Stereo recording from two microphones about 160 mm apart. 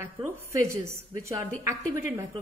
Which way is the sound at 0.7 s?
15° right (ahead or behind).